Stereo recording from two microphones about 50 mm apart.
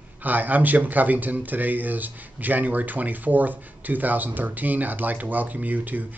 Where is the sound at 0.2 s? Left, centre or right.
Right.